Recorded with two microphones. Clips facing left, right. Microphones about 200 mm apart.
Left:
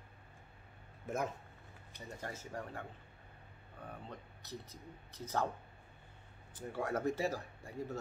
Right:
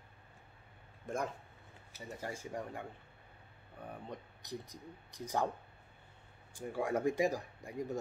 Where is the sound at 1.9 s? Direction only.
10° right (ahead or behind).